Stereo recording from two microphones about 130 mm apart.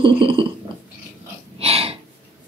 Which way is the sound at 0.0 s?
40° right (ahead or behind).